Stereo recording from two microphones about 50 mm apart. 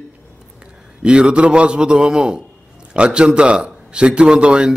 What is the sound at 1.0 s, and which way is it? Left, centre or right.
A man's voice, centre.